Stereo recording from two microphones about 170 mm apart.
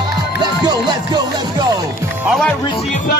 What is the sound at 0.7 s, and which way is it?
Music, 25° right (ahead or behind).